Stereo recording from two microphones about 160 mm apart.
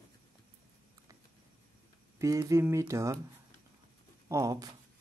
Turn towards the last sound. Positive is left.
turn(degrees=-25)  # may be behind; listen again after turning